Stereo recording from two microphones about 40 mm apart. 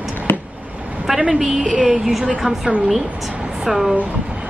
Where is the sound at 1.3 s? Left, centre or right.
Centre.